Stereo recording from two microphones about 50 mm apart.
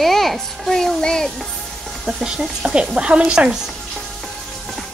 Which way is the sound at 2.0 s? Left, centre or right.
Centre.